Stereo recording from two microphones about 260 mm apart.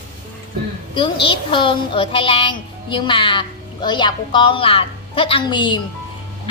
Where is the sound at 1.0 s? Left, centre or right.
Centre.